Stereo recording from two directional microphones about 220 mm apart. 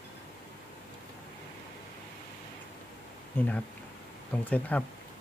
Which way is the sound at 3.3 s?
5° left (ahead or behind).